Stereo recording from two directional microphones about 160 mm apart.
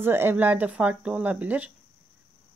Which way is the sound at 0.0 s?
15° right (ahead or behind).